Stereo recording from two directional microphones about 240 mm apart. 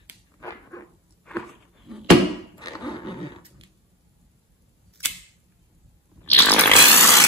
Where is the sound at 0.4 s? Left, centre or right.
Centre.